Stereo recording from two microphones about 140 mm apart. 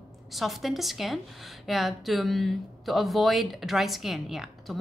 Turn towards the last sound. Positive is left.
turn(degrees=0)  # may be behind; listen again after turning